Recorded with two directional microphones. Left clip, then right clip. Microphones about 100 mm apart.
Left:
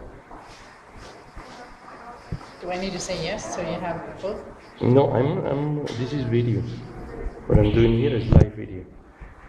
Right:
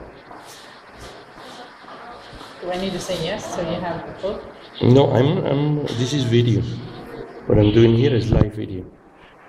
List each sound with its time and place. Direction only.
2.7 s a woman's voice: 30° right (ahead or behind)
3.3 s a man's voice: centre (ahead or behind)
3.6 s a woman's voice: 25° right (ahead or behind)
3.9 s speech: 10° right (ahead or behind)
4.7 s a man's voice: 5° left (ahead or behind)
7.4 s a man's voice: centre (ahead or behind)